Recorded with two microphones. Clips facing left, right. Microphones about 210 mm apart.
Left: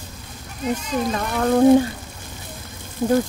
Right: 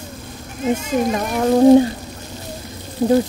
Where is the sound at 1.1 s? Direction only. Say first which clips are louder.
Right 1 dB; 15° right (ahead or behind).